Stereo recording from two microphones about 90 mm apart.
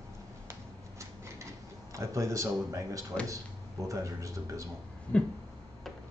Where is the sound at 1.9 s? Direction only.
35° right (ahead or behind).